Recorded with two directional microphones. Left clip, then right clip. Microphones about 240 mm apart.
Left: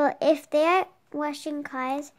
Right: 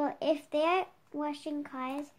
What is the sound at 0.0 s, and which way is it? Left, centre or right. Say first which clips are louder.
A woman's voice: left 9 dB; left.